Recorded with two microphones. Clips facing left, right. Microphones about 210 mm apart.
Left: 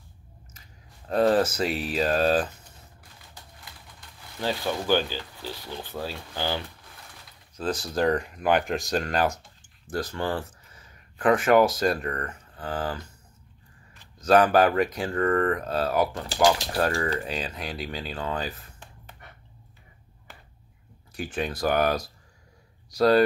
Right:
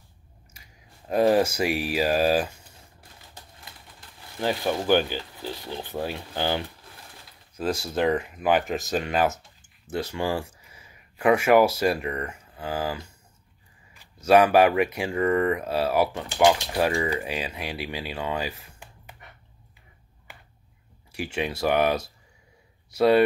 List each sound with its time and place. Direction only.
0.5 s speech: 10° right (ahead or behind)
4.4 s speech: 20° right (ahead or behind)
7.8 s speech: 5° right (ahead or behind)
21.3 s speech: 10° right (ahead or behind)